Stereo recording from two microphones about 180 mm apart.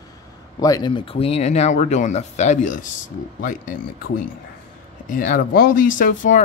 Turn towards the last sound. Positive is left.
turn(degrees=45)  # may be behind; listen again after turning